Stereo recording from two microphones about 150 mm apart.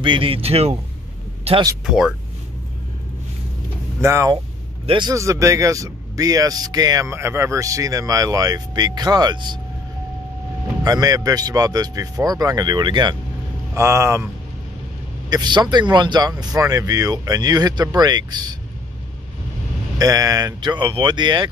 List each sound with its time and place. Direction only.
0.0 s speech: 35° right (ahead or behind)
1.9 s speech: centre (ahead or behind)
4.0 s speech: 20° right (ahead or behind)
4.8 s a man's voice: 30° right (ahead or behind)
5.1 s speech: 20° right (ahead or behind)
10.8 s speech: 25° right (ahead or behind)
13.7 s speech: 20° right (ahead or behind)
15.2 s speech: 30° right (ahead or behind)
20.0 s speech: 25° right (ahead or behind)